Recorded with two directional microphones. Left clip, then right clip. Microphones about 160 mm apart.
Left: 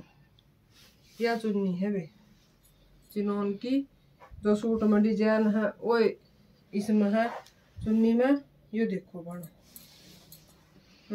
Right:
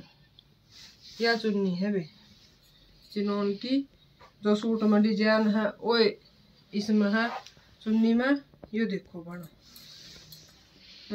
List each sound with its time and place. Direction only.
1.2 s speech: 5° right (ahead or behind)
3.1 s speech: 15° left (ahead or behind)
4.4 s speech: centre (ahead or behind)
4.7 s speech: 15° right (ahead or behind)
5.9 s speech: centre (ahead or behind)
6.7 s speech: 10° left (ahead or behind)
8.0 s speech: 25° left (ahead or behind)